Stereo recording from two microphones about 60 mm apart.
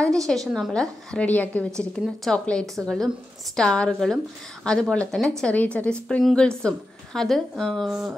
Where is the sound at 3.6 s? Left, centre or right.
Centre.